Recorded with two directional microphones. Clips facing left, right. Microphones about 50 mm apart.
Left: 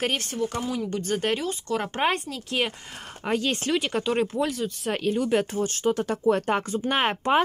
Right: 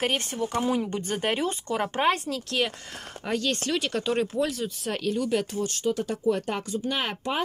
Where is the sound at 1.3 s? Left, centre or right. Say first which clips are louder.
Left 1 dB; right.